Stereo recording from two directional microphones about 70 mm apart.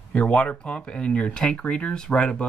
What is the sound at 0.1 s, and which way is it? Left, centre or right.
Speech, centre.